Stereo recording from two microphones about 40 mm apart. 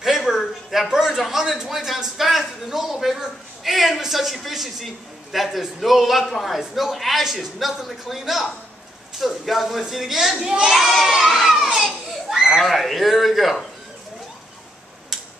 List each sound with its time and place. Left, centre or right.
0.0 s a sound: centre
0.8 s a man's voice: centre
10.4 s speech: centre
10.7 s a child's voice: centre